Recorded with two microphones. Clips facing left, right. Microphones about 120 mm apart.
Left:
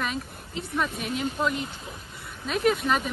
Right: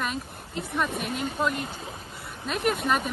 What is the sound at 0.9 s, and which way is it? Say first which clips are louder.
Speech: even; 55° right (ahead or behind).